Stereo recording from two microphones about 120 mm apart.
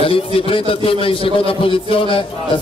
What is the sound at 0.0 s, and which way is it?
A man's voice, 50° left (ahead or behind).